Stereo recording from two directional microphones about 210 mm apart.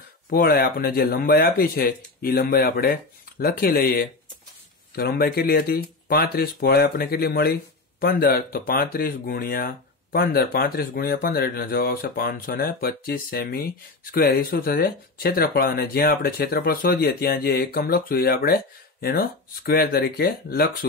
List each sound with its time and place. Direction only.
0.3 s speech: 45° left (ahead or behind)